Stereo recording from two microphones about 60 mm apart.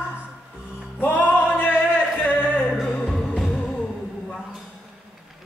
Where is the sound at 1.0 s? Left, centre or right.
Left.